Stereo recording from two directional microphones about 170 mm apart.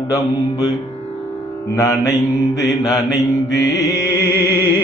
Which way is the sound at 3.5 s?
20° left (ahead or behind).